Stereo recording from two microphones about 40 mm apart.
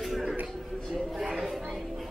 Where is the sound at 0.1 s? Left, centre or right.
Centre.